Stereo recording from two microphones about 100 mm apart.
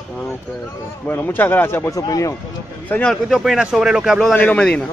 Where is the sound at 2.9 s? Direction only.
15° left (ahead or behind).